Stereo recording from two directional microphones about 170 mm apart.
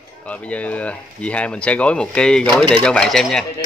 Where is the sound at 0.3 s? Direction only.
10° left (ahead or behind).